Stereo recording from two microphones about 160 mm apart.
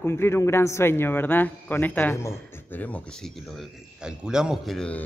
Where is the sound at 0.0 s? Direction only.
15° left (ahead or behind).